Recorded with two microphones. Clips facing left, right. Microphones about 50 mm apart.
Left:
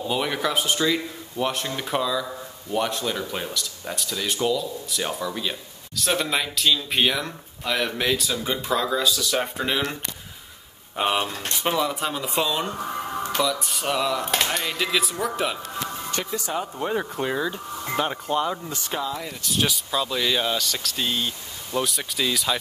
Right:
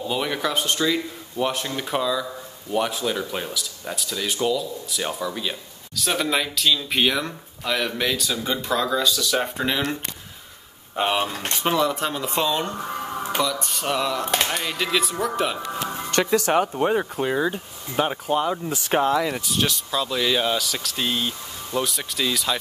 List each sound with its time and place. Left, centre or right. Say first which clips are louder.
0.0 s speech: even; centre
11.0 s speech: right 1 dB; centre
16.1 s speech: right 13 dB; right
17.0 s speech: right 3 dB; centre
18.9 s speech: right 8 dB; right
19.1 s speech: right 11 dB; right
19.4 s speech: even; centre